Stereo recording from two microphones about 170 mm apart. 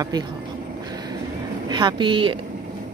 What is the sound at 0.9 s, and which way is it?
Vehicle, 25° right (ahead or behind).